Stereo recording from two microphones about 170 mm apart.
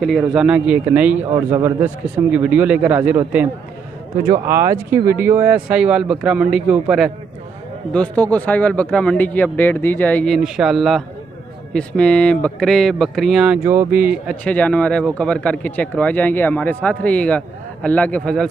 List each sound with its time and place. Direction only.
0.0 s a man's voice: centre (ahead or behind)
7.9 s a man's voice: 10° left (ahead or behind)
13.7 s speech: 15° right (ahead or behind)
14.3 s a man's voice: 10° left (ahead or behind)